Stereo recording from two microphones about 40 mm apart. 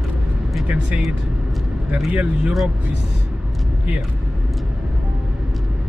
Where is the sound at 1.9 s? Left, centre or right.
Right.